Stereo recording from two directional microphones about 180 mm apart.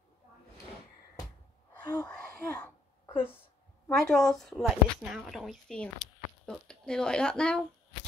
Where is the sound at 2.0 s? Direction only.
5° left (ahead or behind).